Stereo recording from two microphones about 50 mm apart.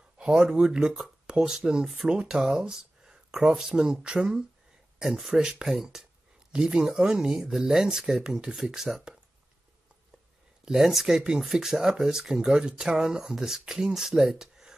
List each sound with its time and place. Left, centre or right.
0.2 s speech: centre
10.6 s speech: centre